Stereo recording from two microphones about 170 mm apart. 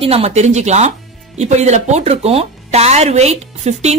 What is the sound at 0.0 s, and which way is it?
Speech, 35° right (ahead or behind).